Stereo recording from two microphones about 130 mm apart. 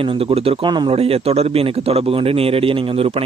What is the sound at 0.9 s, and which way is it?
A man's voice, 50° right (ahead or behind).